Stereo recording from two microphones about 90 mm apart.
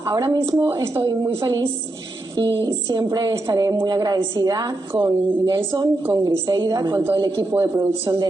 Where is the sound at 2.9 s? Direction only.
40° right (ahead or behind).